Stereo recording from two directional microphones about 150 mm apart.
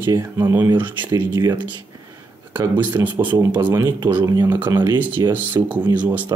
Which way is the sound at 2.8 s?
10° right (ahead or behind).